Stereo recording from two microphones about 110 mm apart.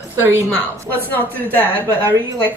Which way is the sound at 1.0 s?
15° left (ahead or behind).